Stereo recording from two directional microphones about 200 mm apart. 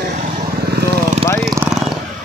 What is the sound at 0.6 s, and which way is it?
Vehicle, 55° right (ahead or behind).